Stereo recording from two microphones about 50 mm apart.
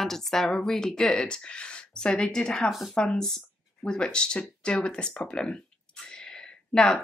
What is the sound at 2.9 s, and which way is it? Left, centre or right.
Speech, centre.